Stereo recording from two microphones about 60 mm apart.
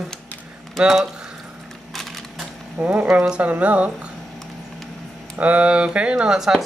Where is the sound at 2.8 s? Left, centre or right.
Right.